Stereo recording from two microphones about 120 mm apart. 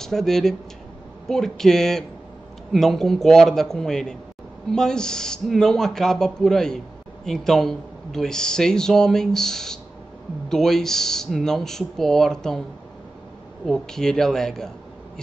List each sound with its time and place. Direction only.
0.0 s speech: 5° left (ahead or behind)
13.7 s speech: 5° left (ahead or behind)